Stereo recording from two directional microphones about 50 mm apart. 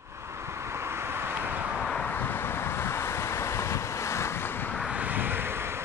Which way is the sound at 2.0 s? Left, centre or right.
Left.